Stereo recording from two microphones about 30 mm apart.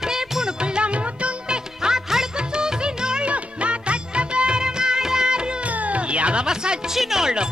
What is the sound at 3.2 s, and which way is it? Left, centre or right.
Music, right.